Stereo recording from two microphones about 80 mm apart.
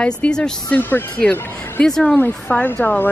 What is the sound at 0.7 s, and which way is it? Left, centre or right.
Speech, left.